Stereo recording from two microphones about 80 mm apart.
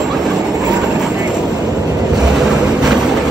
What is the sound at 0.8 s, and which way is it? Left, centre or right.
Vehicle, centre.